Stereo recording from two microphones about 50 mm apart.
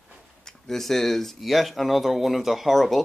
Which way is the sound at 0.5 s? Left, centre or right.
Centre.